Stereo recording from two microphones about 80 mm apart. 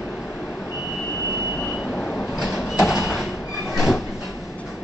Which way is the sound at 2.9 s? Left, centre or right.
Left.